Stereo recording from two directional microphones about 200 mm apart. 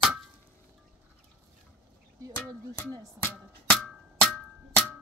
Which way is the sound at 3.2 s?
5° left (ahead or behind).